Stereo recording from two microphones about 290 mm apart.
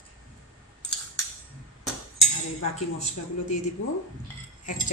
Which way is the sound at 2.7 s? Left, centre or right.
Left.